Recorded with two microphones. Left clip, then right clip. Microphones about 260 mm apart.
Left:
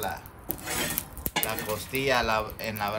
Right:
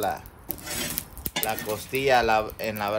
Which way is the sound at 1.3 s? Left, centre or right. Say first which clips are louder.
Right 1 dB; centre.